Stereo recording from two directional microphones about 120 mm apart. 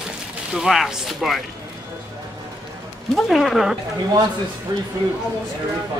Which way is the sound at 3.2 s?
Centre (ahead or behind).